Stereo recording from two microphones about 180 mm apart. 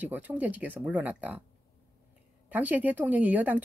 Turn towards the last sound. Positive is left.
turn(degrees=-10)  # may be behind; listen again after turning